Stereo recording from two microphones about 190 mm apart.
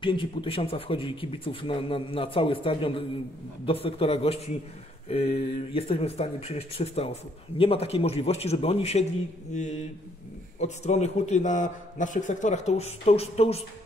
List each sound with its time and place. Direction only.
0.0 s speech: 25° left (ahead or behind)